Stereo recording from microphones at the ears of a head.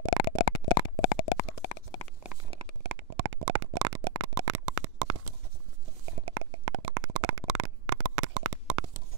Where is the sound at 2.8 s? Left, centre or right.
Right.